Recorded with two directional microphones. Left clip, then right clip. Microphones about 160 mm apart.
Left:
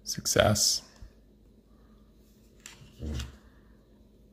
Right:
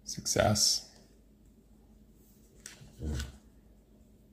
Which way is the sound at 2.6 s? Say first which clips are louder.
Left 1 dB; 25° left (ahead or behind).